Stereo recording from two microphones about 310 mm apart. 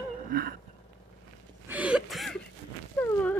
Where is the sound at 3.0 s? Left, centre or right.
Centre.